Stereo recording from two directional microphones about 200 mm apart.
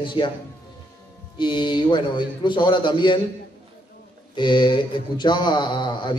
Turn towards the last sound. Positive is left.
turn(degrees=20)  # may be behind; listen again after turning